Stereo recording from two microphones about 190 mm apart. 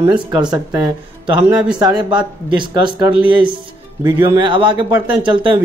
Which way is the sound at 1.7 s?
25° right (ahead or behind).